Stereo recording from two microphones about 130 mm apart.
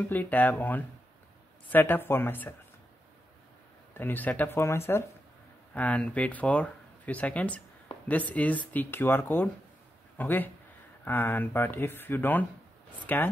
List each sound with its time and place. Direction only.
0.1 s speech: 15° left (ahead or behind)
3.9 s speech: 15° left (ahead or behind)